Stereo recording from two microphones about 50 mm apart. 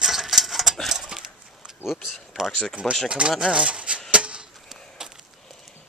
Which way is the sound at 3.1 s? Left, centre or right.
Centre.